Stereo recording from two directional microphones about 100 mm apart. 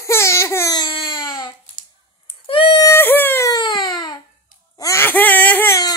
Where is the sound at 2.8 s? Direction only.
25° left (ahead or behind).